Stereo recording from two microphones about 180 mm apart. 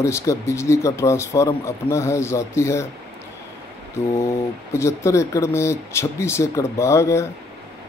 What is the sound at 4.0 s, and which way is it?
Speech, 15° left (ahead or behind).